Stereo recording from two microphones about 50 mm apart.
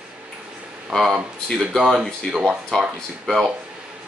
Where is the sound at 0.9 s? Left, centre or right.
Centre.